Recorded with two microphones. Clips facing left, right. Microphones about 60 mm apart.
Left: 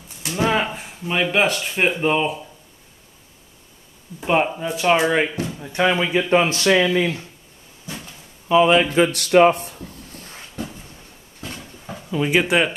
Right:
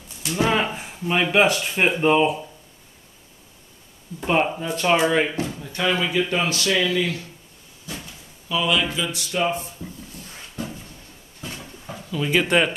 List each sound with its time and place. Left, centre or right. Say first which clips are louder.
0.2 s a sound: left 1 dB; left
0.5 s speech: left 1 dB; centre
4.2 s speech: left 2 dB; centre; by 7.2 s left
8.5 s a man's voice: left 8 dB; left
8.9 s speech: left 11 dB; left
12.1 s speech: left 3 dB; left
12.4 s speech: even; centre